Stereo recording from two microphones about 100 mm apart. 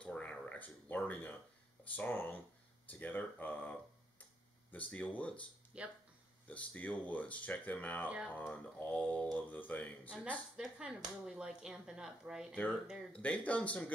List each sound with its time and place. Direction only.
0.0 s a sound: 10° left (ahead or behind)
2.0 s speech: 15° left (ahead or behind)
5.7 s speech: 10° right (ahead or behind)
6.4 s speech: 15° left (ahead or behind)
10.6 s speech: 5° right (ahead or behind)
13.1 s speech: 15° left (ahead or behind)